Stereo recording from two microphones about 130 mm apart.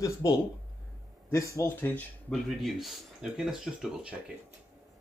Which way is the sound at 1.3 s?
25° left (ahead or behind).